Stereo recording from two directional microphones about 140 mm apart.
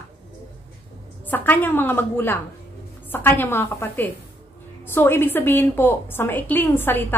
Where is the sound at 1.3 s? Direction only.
15° left (ahead or behind).